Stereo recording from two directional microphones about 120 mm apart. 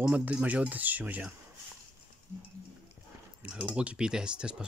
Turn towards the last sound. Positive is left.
turn(degrees=-10)  # may be behind; listen again after turning